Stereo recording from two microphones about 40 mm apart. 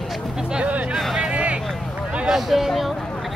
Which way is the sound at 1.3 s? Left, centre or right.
Right.